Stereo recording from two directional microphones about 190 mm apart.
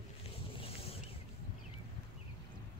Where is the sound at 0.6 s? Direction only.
30° left (ahead or behind).